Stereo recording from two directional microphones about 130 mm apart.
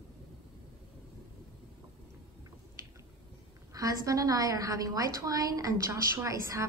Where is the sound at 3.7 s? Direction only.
25° right (ahead or behind).